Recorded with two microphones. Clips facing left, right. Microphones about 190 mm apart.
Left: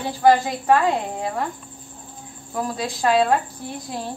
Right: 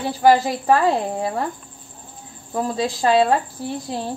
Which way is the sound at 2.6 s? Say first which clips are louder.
Right 3 dB; 25° right (ahead or behind).